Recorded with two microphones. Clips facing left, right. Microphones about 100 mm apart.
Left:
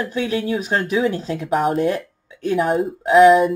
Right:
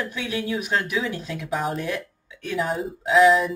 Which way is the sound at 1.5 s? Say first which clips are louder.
Left 8 dB; 50° left (ahead or behind).